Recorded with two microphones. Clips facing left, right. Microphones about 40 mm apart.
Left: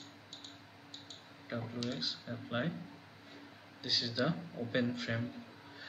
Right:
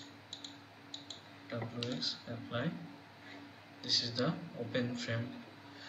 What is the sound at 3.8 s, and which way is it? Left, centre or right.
Speech, centre.